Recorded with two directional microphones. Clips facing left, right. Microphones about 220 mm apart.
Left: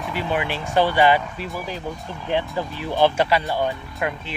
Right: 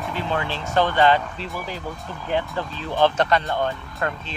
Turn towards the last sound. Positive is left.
turn(degrees=15)  # may be behind; listen again after turning